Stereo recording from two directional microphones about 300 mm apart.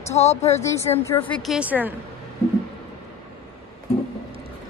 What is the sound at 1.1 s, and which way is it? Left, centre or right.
Speech, centre.